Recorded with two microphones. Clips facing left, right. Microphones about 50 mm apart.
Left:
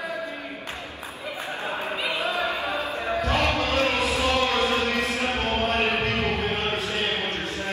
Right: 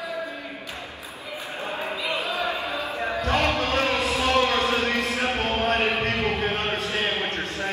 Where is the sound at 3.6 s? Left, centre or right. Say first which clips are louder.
Even; right.